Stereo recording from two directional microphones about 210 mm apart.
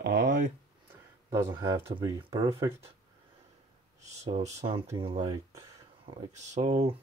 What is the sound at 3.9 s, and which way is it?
Speech, 30° right (ahead or behind).